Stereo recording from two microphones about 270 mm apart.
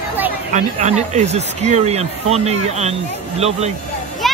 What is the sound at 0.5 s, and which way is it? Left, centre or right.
Speech, right.